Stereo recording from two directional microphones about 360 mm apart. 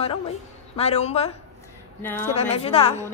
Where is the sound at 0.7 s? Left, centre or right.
Centre.